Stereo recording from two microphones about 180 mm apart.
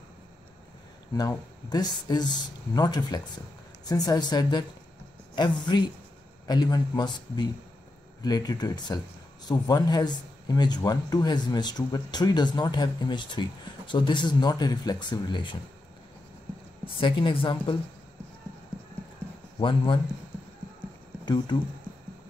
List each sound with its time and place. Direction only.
1.7 s speech: 20° left (ahead or behind)
16.8 s speech: 25° left (ahead or behind)
19.6 s speech: 30° left (ahead or behind)